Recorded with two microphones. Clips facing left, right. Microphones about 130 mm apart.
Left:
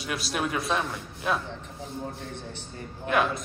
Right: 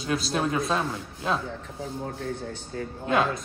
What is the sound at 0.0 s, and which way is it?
Speech, 30° right (ahead or behind).